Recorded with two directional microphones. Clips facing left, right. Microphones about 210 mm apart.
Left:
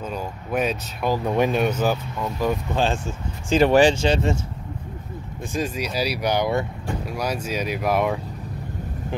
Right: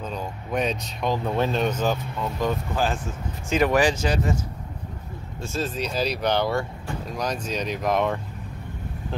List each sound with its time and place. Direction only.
0.0 s speech: 10° left (ahead or behind)
2.7 s speech: 25° left (ahead or behind)
5.4 s speech: 15° left (ahead or behind)